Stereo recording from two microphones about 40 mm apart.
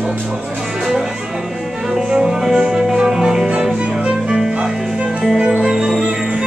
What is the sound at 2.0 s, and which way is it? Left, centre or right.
Music, centre.